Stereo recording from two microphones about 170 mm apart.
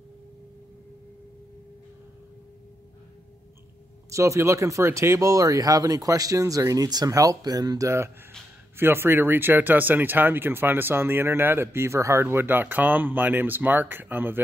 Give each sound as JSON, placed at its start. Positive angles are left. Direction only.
{"t": 4.1, "sound": "speech", "side_deg": -15}